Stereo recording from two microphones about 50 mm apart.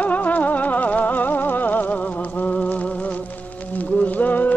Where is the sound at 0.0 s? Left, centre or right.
Left.